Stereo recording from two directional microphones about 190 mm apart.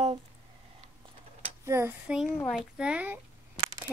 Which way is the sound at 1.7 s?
10° right (ahead or behind).